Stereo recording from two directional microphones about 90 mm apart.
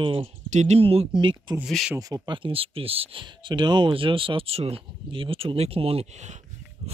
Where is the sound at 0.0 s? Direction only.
90° right; by 1.6 s 60° right (ahead or behind).